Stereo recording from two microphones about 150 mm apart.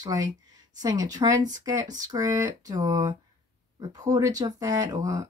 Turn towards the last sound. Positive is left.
turn(degrees=-20)  # may be behind; listen again after turning